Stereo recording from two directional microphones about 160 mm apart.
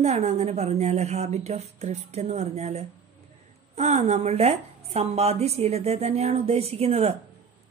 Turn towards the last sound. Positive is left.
turn(degrees=-40)  # may be behind; listen again after turning